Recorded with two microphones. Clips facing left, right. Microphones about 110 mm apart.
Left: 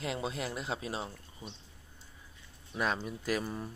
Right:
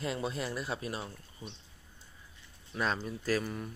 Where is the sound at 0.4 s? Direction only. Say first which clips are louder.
Right 1 dB; 20° left (ahead or behind).